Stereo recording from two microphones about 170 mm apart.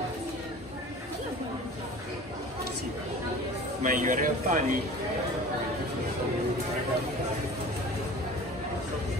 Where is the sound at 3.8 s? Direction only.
50° right (ahead or behind).